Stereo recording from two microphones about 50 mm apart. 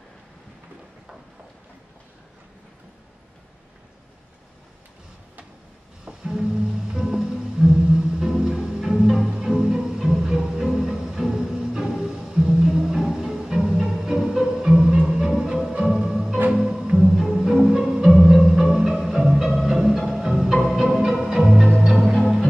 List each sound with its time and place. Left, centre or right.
6.0 s music: centre